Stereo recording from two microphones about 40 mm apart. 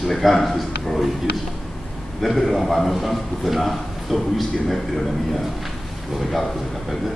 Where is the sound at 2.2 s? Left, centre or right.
Centre.